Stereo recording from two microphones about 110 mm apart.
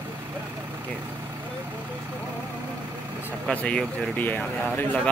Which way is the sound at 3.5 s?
10° left (ahead or behind).